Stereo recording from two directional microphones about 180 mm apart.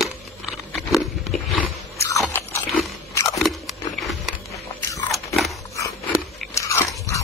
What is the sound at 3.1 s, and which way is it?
Crunch, 15° left (ahead or behind).